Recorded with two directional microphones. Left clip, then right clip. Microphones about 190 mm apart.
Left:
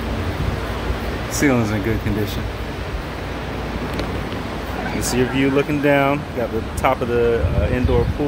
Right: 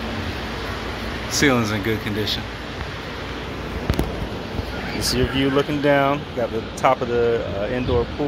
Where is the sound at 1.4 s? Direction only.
Centre (ahead or behind).